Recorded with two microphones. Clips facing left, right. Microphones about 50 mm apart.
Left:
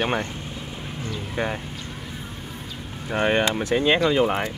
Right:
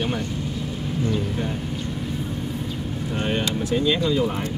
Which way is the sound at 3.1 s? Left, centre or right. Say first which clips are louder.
Left 5 dB; left.